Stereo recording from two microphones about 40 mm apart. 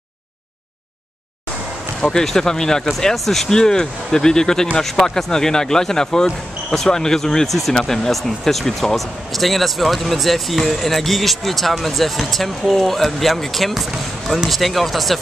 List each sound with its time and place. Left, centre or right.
2.0 s speech: centre
7.4 s speech: centre